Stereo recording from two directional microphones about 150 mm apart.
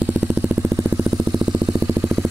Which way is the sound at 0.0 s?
10° right (ahead or behind).